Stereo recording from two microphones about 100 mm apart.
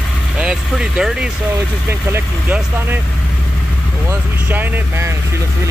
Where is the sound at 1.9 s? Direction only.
25° right (ahead or behind).